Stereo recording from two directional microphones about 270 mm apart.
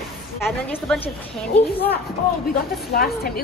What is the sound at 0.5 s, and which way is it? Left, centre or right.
Speech, centre.